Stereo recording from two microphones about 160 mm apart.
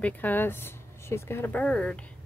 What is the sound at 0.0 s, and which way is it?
Speech, 10° left (ahead or behind).